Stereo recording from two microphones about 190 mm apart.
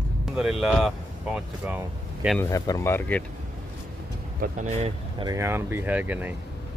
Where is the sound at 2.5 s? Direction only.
20° left (ahead or behind).